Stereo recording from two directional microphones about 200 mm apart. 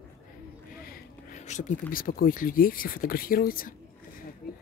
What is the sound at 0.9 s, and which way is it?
Speech, 40° left (ahead or behind).